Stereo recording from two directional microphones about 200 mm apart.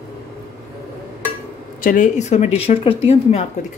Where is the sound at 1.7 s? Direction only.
40° left (ahead or behind).